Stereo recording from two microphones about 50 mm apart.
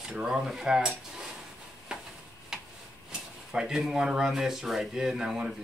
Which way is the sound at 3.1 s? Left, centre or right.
Centre.